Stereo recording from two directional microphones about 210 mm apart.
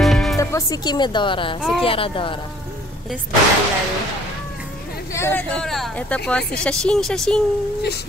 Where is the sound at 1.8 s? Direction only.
25° left (ahead or behind).